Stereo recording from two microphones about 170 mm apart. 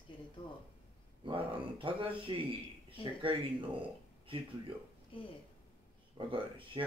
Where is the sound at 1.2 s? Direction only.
30° right (ahead or behind).